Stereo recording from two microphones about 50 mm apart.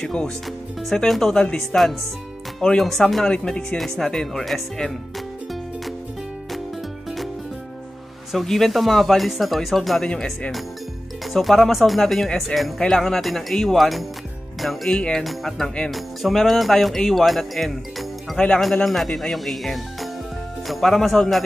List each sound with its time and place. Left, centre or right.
0.0 s speech: centre
0.8 s speech: centre
1.4 s speech: centre
2.8 s speech: centre
3.3 s speech: centre
3.7 s speech: centre
8.3 s speech: centre
11.3 s speech: centre